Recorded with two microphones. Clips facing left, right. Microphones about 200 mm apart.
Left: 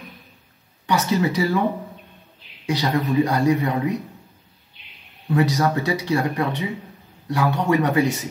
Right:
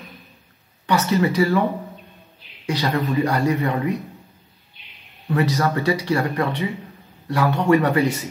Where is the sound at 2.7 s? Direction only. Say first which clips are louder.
Left 1 dB; 15° left (ahead or behind).